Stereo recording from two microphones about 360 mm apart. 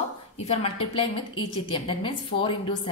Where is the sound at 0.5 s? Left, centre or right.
Centre.